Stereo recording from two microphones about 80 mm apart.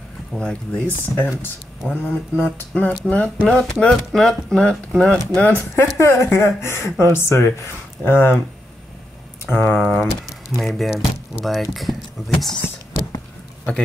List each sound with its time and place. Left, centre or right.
0.3 s speech: centre
5.9 s speech: left
9.5 s speech: left
9.8 s speech: centre